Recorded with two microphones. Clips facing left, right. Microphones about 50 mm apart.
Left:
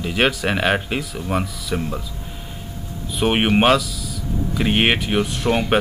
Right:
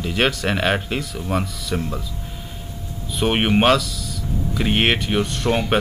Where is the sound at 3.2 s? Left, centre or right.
Centre.